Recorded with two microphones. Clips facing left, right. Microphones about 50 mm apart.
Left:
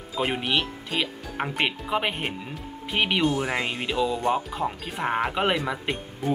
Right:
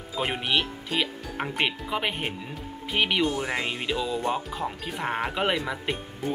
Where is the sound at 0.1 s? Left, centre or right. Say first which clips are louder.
Left 1 dB; centre.